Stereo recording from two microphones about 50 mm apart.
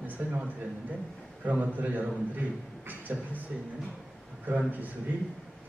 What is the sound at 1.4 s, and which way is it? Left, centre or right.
A man's voice, right.